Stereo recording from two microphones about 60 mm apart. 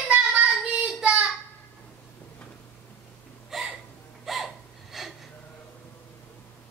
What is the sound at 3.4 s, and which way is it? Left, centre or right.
Hiccup, centre.